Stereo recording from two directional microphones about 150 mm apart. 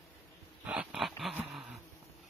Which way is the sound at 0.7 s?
5° right (ahead or behind).